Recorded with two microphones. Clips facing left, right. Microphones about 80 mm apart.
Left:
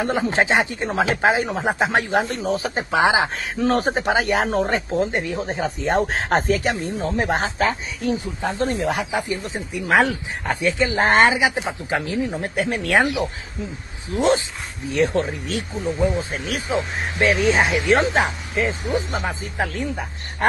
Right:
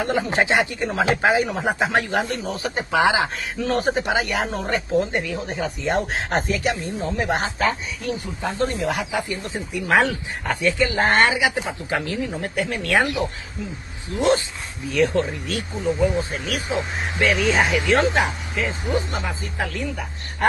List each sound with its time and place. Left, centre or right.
0.0 s speech: left
3.5 s speech: left
5.5 s speech: left
8.9 s speech: left
14.1 s speech: left